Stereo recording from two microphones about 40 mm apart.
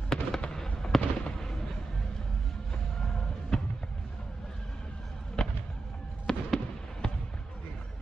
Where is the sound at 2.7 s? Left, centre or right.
Centre.